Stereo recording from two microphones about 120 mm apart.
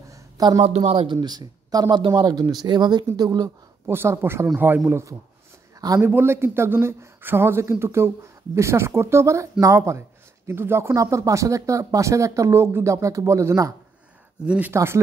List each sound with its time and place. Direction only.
0.1 s a sound: 40° right (ahead or behind)
0.7 s speech: 60° right (ahead or behind)
1.0 s speech: 35° right (ahead or behind)
3.9 s a man's voice: 20° right (ahead or behind)
14.4 s a man's voice: 10° right (ahead or behind)
14.7 s speech: 20° right (ahead or behind)